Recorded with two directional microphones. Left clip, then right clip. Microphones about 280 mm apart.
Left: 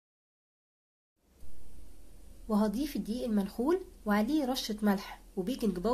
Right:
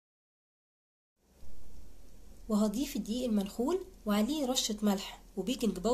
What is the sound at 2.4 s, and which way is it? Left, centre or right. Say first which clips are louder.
A woman's voice: left 1 dB; left.